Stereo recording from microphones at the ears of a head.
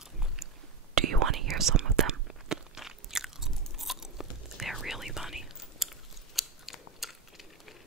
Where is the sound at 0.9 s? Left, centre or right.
Right.